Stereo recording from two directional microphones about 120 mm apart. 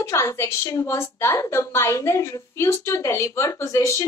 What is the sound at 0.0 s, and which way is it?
A woman's voice, 25° left (ahead or behind).